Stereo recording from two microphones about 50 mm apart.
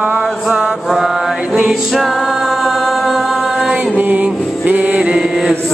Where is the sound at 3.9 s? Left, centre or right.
Right.